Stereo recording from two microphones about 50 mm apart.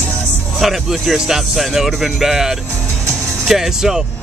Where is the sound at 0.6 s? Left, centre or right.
Centre.